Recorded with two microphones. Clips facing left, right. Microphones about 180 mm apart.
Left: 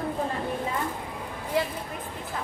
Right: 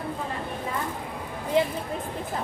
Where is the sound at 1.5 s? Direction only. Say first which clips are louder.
Right 4 dB; 20° right (ahead or behind).